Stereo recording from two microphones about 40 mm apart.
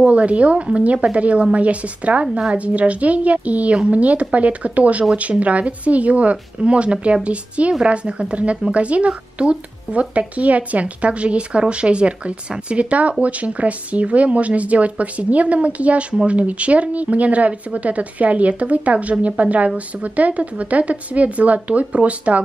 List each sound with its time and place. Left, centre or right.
0.0 s a woman's voice: right